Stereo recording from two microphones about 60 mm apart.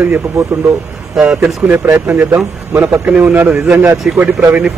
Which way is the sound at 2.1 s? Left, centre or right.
Right.